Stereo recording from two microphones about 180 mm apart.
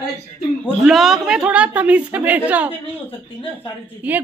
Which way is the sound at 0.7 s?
Centre (ahead or behind).